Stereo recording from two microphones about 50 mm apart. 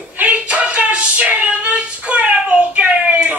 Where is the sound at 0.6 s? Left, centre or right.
Right.